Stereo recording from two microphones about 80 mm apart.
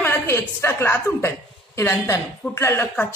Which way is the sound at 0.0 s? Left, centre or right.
Left.